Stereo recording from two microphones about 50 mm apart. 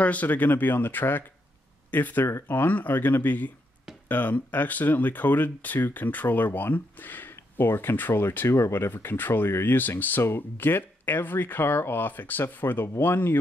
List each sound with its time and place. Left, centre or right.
0.0 s speech: left